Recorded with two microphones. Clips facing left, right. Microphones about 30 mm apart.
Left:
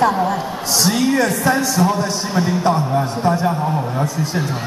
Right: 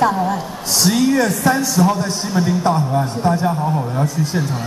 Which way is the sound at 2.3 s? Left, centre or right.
Centre.